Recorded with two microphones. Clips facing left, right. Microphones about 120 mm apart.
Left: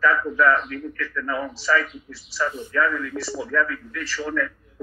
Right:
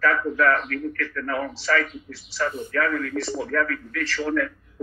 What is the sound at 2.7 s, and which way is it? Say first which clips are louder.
A man's voice: left 1 dB; 55° right (ahead or behind).